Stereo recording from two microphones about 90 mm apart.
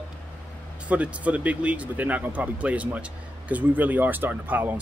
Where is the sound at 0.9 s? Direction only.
15° right (ahead or behind).